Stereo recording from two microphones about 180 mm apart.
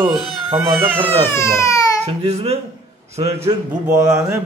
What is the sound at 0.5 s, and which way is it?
Speech, 30° right (ahead or behind).